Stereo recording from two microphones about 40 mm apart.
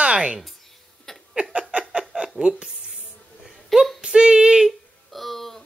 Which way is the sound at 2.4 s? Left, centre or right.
Right.